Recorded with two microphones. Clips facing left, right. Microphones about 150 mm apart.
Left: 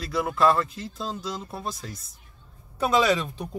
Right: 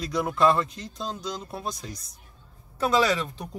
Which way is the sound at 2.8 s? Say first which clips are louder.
Left 1 dB; 20° left (ahead or behind).